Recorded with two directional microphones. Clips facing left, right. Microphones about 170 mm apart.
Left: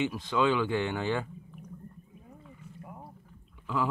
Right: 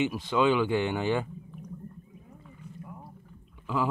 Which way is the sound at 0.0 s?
20° right (ahead or behind).